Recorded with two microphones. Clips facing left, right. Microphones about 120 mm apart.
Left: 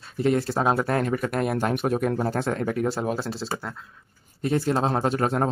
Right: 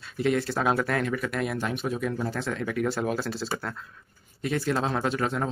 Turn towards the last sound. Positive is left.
turn(degrees=45)  # may be behind; listen again after turning